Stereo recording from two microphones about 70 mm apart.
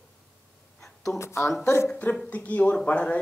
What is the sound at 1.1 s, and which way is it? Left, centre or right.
Speech, left.